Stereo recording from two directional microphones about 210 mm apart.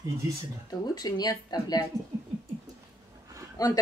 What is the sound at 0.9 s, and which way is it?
Speech, 20° left (ahead or behind).